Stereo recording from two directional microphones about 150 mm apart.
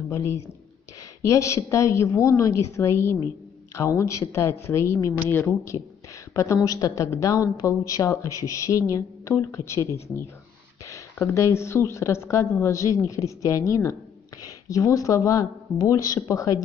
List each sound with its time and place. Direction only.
0.1 s speech: 15° left (ahead or behind)